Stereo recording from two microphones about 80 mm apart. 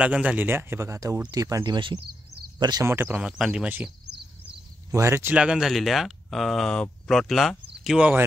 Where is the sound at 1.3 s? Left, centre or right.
Right.